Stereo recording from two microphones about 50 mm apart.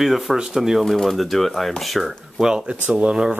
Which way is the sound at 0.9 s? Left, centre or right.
Centre.